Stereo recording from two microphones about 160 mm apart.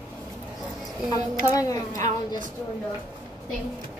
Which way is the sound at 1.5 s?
20° left (ahead or behind).